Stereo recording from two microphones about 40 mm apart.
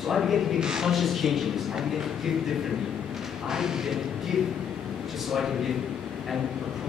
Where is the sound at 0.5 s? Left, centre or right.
Centre.